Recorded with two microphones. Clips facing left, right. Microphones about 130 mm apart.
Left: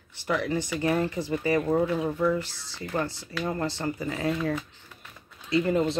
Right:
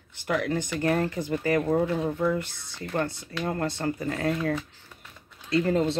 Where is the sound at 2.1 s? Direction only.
50° right (ahead or behind).